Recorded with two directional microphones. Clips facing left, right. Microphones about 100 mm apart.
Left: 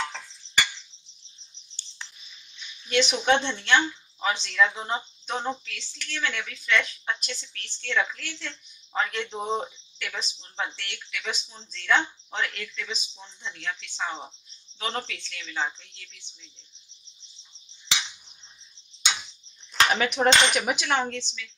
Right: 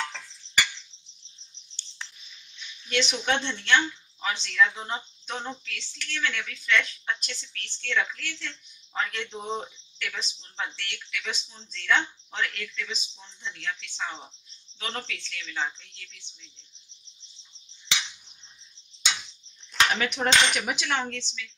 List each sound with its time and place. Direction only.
0.0 s a sound: 10° left (ahead or behind)
2.9 s speech: 15° left (ahead or behind)
13.2 s speech: 20° left (ahead or behind)
19.9 s speech: 15° left (ahead or behind)